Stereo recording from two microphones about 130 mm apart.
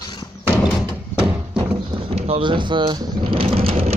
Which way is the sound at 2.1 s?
55° right (ahead or behind).